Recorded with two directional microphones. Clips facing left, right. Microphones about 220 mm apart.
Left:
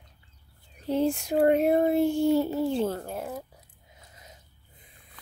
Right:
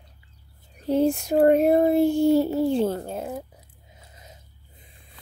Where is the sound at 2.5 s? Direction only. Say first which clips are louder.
Right 4 dB; 30° right (ahead or behind).